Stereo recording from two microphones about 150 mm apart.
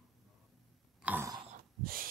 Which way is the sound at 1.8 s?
75° right (ahead or behind).